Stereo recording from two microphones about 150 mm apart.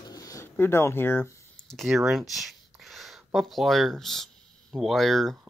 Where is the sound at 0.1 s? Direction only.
20° left (ahead or behind).